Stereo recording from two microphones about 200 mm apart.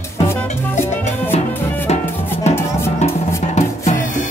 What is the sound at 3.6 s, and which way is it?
Music, 35° left (ahead or behind).